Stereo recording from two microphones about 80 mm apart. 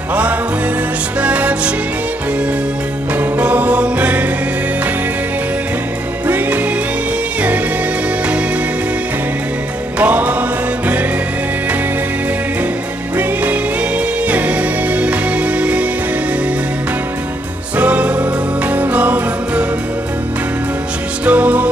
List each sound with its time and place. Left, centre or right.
1.2 s music: centre
3.3 s music: centre
6.2 s music: right
9.9 s music: centre
13.2 s music: centre
17.7 s music: centre
21.3 s music: centre